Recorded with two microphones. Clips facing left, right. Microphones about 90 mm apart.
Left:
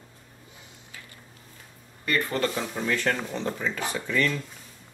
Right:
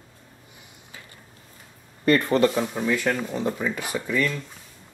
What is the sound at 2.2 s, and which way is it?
Speech, 20° right (ahead or behind).